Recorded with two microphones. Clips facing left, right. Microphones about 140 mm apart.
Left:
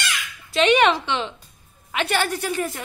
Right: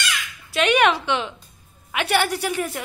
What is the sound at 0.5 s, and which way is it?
A woman's voice, 5° right (ahead or behind).